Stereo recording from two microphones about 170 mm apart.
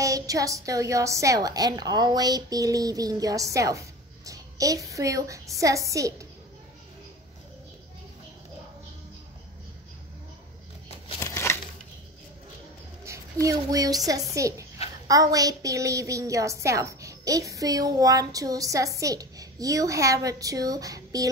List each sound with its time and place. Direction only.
0.0 s a woman's voice: 20° right (ahead or behind)
11.1 s a sound: 15° left (ahead or behind)
13.0 s a woman's voice: 20° right (ahead or behind)